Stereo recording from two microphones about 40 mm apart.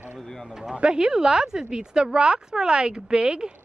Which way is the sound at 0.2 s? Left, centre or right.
Centre.